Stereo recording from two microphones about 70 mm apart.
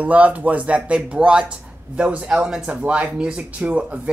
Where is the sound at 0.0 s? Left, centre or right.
Right.